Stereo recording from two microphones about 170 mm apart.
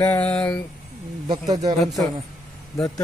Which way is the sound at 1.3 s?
25° right (ahead or behind).